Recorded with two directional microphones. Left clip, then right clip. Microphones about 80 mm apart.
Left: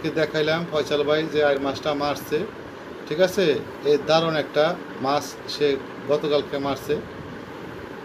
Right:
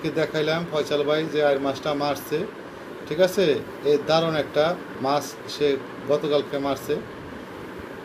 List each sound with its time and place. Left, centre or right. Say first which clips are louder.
0.0 s speech: left 1 dB; centre